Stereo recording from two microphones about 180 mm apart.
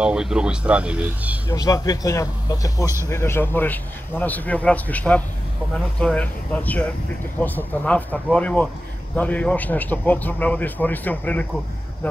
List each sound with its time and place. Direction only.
0.0 s speech: 5° right (ahead or behind)
1.5 s a man's voice: 20° left (ahead or behind)